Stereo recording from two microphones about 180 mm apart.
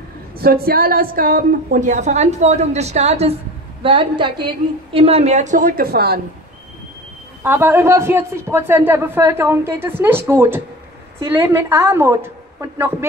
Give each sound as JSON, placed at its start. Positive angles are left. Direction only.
{"t": 0.4, "sound": "a woman's voice", "side_deg": -55}
{"t": 7.4, "sound": "a man's voice", "side_deg": -10}